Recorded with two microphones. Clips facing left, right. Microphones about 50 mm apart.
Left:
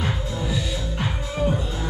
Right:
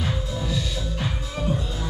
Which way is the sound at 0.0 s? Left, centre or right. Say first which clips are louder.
Left 1 dB; centre.